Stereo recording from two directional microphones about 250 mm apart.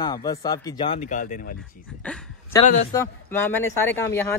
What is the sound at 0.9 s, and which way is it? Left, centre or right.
Speech, left.